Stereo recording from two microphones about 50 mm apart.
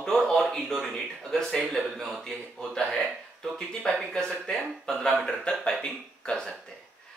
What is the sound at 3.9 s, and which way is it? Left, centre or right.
Speech, centre.